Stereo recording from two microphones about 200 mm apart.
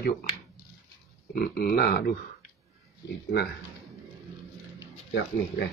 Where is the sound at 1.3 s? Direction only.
50° left (ahead or behind).